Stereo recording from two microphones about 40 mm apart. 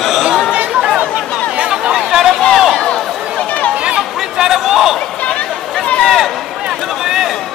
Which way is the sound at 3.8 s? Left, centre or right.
Centre.